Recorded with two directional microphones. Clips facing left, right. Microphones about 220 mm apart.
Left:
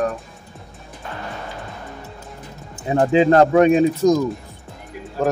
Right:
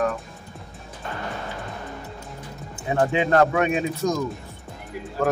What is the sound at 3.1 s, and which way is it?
A man's voice, 30° left (ahead or behind).